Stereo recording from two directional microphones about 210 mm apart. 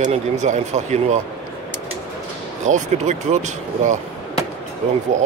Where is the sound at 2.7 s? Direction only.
35° right (ahead or behind).